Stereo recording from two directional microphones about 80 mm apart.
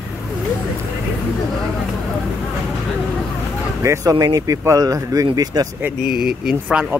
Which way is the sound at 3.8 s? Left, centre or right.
Right.